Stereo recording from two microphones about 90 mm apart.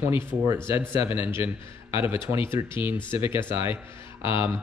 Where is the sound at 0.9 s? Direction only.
30° right (ahead or behind).